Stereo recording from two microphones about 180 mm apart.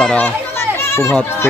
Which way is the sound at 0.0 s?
5° left (ahead or behind).